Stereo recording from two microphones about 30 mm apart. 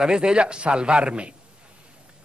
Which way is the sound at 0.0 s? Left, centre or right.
Right.